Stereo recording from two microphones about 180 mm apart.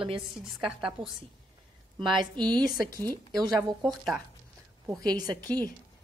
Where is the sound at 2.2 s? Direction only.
25° right (ahead or behind).